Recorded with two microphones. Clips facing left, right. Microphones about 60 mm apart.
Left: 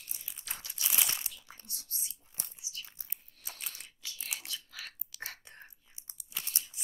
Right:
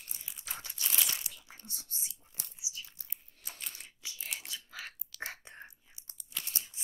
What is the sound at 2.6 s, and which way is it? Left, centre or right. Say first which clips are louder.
Biting: right 1 dB; centre.